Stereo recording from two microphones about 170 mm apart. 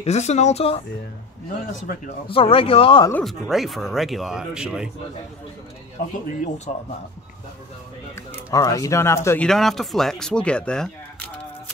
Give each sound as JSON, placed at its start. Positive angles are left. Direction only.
{"t": 0.0, "sound": "speech", "side_deg": 40}
{"t": 1.7, "sound": "speech", "side_deg": 50}
{"t": 2.2, "sound": "speech", "side_deg": 35}
{"t": 3.1, "sound": "speech", "side_deg": 10}
{"t": 6.1, "sound": "speech", "side_deg": 50}
{"t": 8.5, "sound": "speech", "side_deg": 20}
{"t": 9.5, "sound": "speech", "side_deg": 0}